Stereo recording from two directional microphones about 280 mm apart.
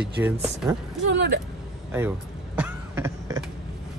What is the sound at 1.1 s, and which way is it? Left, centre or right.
Speech, right.